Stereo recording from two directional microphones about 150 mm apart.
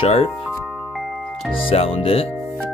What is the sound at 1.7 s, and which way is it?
Speech, 40° left (ahead or behind).